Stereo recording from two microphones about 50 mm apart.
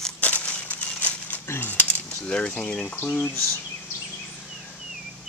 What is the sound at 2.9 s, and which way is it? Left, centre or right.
Speech, left.